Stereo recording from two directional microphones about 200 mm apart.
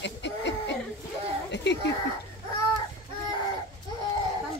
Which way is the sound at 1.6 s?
60° left (ahead or behind).